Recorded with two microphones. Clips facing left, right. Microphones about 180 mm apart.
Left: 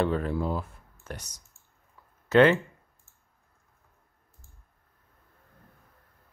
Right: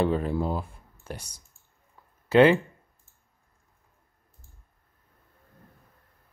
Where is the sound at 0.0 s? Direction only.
15° right (ahead or behind).